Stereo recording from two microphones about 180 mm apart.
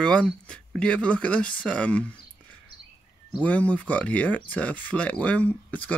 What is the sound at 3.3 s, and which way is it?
Speech, 10° left (ahead or behind).